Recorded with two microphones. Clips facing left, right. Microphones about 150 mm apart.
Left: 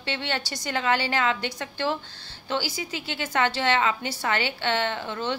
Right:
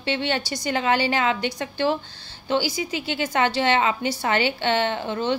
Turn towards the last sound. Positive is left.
turn(degrees=-20)  # may be behind; listen again after turning